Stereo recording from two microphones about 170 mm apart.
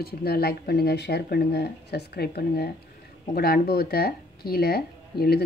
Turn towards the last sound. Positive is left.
turn(degrees=65)  # may be behind; listen again after turning